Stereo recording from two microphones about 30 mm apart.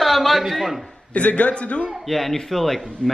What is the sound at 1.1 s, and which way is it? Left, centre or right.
Speech, left.